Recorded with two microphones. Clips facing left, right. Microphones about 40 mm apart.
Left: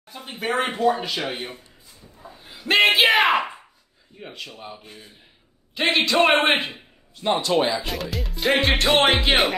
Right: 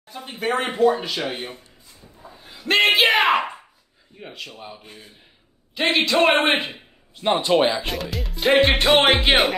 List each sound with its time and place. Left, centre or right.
0.1 s speech: centre
2.1 s a sound: centre
4.2 s speech: centre
7.2 s speech: right
7.9 s speech: centre